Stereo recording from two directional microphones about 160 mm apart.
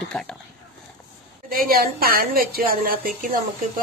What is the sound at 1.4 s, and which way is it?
A woman's voice, 65° right (ahead or behind).